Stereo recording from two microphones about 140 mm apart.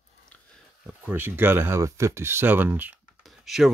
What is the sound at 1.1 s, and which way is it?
Speech, 15° right (ahead or behind).